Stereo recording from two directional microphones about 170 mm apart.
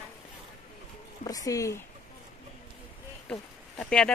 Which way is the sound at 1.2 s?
20° left (ahead or behind).